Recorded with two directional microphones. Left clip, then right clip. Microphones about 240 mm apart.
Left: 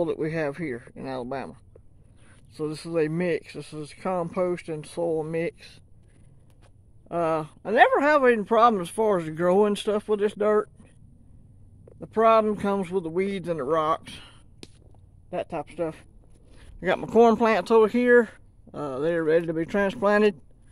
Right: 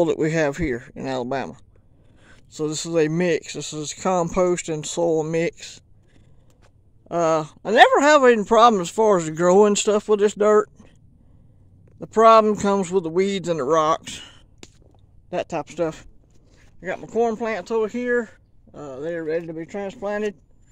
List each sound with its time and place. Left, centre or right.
0.0 s speech: right
7.1 s speech: right
12.0 s speech: right
15.2 s speech: right
16.8 s speech: left